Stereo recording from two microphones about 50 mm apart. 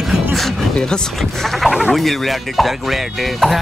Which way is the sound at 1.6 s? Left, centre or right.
Centre.